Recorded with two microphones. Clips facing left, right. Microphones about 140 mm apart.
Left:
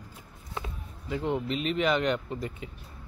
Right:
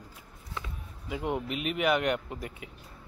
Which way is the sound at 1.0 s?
10° right (ahead or behind).